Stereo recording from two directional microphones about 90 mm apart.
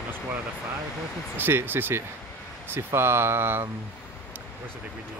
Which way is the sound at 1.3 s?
25° right (ahead or behind).